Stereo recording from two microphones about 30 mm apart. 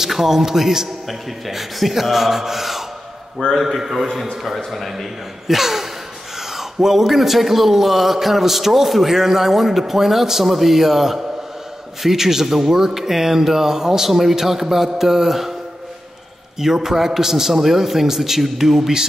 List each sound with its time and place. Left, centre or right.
0.0 s a man's voice: centre
3.4 s a man's voice: left
3.8 s a man's voice: centre
16.5 s a man's voice: centre